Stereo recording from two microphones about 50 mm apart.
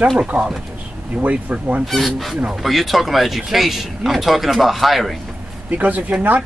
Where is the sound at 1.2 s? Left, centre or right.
Right.